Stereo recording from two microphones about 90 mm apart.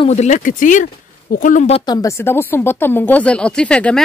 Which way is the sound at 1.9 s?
40° left (ahead or behind).